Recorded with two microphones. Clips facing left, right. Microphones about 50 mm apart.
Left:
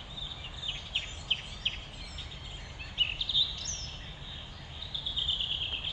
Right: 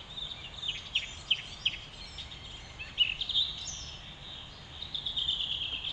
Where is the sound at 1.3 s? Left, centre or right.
Right.